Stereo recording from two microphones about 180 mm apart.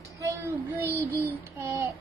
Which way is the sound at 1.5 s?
15° right (ahead or behind).